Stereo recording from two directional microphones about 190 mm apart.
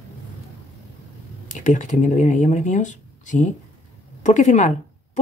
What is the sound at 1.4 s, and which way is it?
Speech, 40° left (ahead or behind).